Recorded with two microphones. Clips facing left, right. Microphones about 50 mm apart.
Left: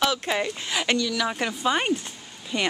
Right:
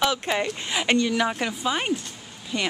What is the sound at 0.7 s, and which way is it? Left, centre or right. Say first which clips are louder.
Speech: right 2 dB; centre.